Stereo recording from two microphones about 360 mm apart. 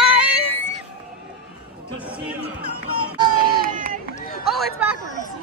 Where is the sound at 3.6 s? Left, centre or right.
Right.